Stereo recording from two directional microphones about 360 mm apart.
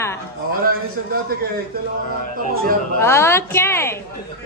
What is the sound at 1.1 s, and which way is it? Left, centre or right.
Speech, right.